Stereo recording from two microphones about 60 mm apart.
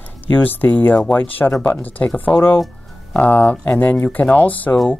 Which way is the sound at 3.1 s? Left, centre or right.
Left.